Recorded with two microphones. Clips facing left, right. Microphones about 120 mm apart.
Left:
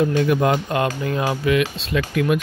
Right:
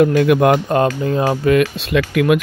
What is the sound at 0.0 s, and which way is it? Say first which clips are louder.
Speech: right 6 dB; 75° right (ahead or behind).